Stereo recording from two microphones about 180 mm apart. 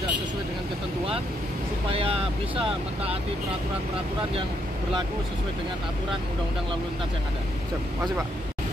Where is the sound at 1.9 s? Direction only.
30° right (ahead or behind).